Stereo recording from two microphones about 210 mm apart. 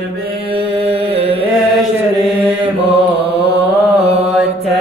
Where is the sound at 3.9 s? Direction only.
30° right (ahead or behind).